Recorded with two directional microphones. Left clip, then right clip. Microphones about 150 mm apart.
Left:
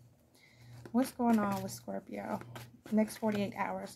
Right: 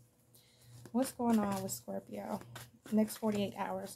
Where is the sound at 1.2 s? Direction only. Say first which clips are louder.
Left 3 dB; 5° left (ahead or behind).